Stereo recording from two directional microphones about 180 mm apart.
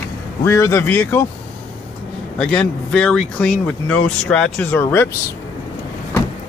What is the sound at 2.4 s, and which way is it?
Speech, 5° left (ahead or behind).